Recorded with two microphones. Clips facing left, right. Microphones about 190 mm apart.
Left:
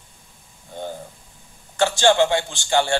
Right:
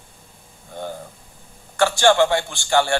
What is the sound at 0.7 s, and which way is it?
A man's voice, 15° left (ahead or behind).